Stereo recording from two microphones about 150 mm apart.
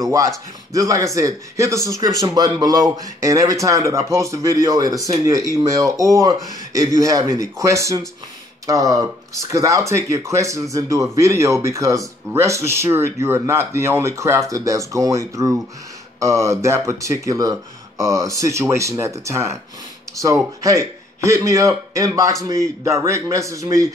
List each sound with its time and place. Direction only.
0.7 s speech: 20° right (ahead or behind)
20.6 s a man's voice: 20° right (ahead or behind)